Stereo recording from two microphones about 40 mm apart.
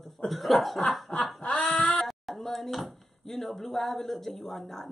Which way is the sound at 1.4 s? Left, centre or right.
Left.